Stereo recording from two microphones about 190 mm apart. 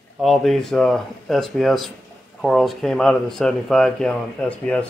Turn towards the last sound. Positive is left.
turn(degrees=5)  # may be behind; listen again after turning